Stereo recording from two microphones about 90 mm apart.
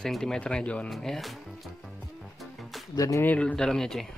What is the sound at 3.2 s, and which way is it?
Speech, 15° left (ahead or behind).